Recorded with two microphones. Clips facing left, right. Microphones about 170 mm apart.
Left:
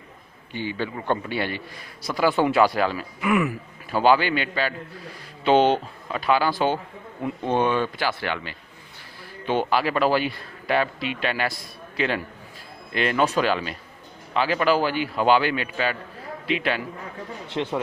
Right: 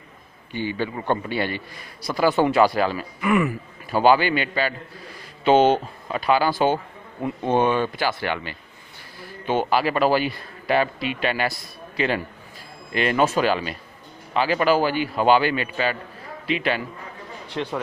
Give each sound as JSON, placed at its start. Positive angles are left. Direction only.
{"t": 0.5, "sound": "speech", "side_deg": -5}
{"t": 12.9, "sound": "speech", "side_deg": -5}
{"t": 17.5, "sound": "a man's voice", "side_deg": 20}